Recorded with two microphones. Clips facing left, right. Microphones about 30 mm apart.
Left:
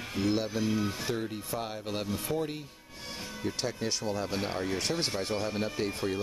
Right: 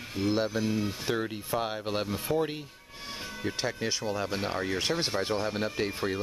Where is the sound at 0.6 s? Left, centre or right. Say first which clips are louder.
Even; centre.